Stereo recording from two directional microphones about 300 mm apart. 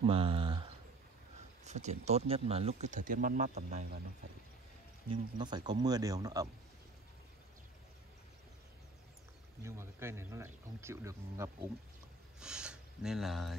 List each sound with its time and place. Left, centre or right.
0.0 s speech: centre
5.1 s speech: centre
9.6 s speech: centre